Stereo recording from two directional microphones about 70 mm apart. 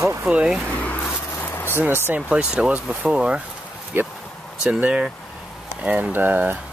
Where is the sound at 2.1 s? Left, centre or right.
Centre.